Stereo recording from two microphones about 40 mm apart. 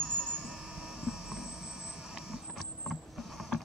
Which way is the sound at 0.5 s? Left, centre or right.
Centre.